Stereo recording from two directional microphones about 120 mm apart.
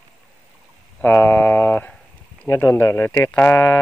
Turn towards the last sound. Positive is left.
turn(degrees=20)  # may be behind; listen again after turning